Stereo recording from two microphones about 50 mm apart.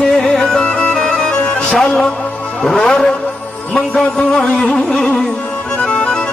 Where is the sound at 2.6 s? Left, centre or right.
Centre.